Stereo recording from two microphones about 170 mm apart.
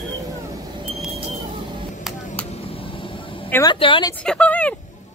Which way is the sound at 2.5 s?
35° left (ahead or behind).